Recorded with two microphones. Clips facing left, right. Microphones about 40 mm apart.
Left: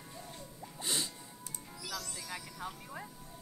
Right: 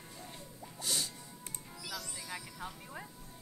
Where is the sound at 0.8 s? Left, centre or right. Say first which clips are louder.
Left 1 dB; left.